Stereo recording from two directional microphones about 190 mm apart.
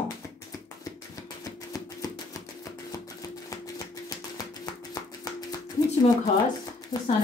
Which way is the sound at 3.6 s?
20° left (ahead or behind).